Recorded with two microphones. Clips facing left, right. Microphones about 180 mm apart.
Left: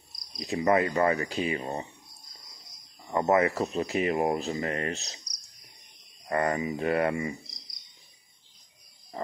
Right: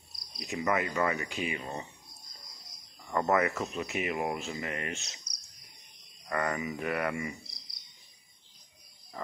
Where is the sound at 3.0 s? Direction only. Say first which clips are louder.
Left 4 dB; 20° left (ahead or behind); by 5.2 s 35° left (ahead or behind).